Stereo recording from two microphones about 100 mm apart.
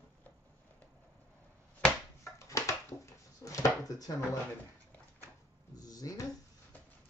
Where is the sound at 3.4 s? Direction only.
35° left (ahead or behind).